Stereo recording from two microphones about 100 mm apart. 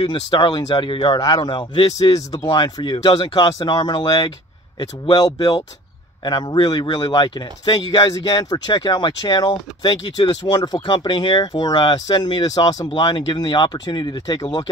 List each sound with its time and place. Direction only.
0.0 s speech: 55° left (ahead or behind)
7.9 s speech: 40° left (ahead or behind)
13.0 s speech: 60° left (ahead or behind); by 14.6 s 45° left (ahead or behind)